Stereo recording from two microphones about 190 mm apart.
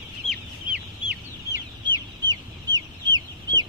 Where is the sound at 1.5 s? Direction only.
20° right (ahead or behind).